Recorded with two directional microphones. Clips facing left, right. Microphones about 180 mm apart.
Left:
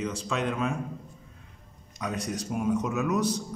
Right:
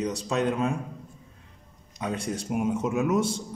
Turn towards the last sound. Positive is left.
turn(degrees=-25)  # may be behind; listen again after turning